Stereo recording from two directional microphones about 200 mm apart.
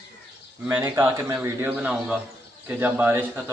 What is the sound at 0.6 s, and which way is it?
A man's voice, 10° right (ahead or behind).